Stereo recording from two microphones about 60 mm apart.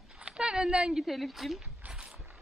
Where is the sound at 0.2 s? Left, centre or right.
Centre.